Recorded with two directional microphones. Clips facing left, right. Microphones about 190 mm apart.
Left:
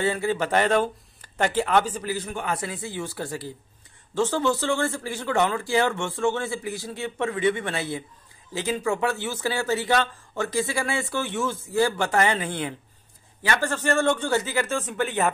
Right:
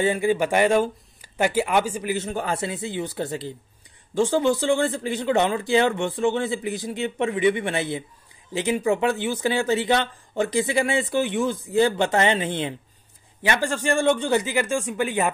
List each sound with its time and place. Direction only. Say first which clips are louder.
0.0 s speech: right 3 dB; 15° right (ahead or behind)
2.3 s speech: right 3 dB; 30° right (ahead or behind); by 15.3 s 10° right (ahead or behind)